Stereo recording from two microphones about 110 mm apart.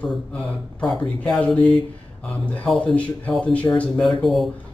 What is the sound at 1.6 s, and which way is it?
Speech, 45° right (ahead or behind).